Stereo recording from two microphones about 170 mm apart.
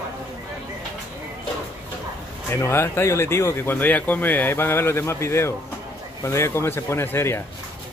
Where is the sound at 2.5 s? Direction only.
15° left (ahead or behind).